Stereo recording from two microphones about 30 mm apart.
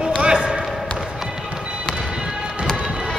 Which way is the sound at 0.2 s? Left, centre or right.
Right.